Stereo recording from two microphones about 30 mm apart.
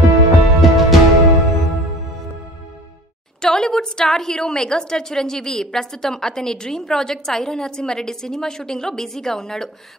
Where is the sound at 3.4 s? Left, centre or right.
Left.